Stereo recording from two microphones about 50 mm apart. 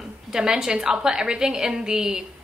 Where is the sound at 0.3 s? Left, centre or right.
Centre.